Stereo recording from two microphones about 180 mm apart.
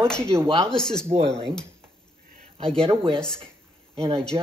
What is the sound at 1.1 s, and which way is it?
Speech, 75° right (ahead or behind).